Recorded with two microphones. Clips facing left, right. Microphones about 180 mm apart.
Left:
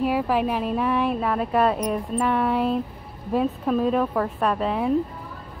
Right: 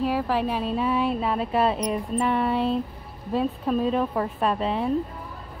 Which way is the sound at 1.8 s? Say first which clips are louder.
Left 1 dB; centre (ahead or behind).